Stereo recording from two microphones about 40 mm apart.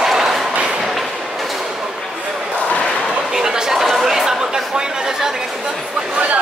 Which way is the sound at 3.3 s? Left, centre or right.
Centre.